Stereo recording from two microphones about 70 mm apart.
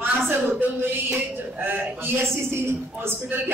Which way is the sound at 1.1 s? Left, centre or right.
Right.